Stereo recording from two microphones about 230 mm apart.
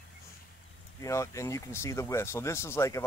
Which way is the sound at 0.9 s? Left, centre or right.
Centre.